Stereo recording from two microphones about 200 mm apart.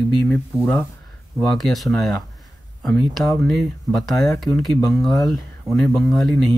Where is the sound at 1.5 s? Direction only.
Centre (ahead or behind).